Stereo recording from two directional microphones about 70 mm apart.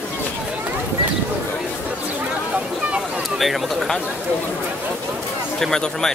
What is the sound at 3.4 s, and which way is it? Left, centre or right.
Speech, centre.